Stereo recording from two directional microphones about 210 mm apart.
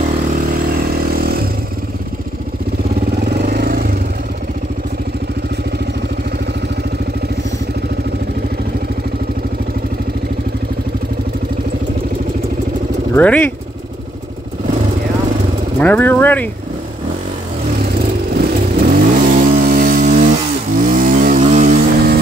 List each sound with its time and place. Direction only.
0.5 s vehicle: 45° right (ahead or behind)
3.2 s vehicle: 50° right (ahead or behind)
13.1 s speech: 5° left (ahead or behind)
15.8 s vehicle: 10° left (ahead or behind)
18.3 s vehicle: 45° right (ahead or behind)